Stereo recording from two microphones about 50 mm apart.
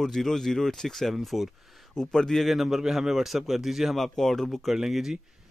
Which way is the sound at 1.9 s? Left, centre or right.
Centre.